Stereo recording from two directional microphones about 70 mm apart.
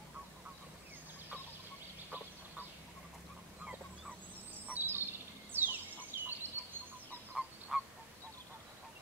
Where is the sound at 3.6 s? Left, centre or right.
Right.